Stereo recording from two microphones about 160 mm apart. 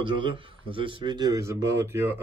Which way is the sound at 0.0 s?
30° right (ahead or behind).